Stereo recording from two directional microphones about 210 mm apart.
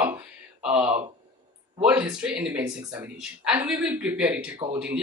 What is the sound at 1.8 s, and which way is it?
Speech, 5° right (ahead or behind).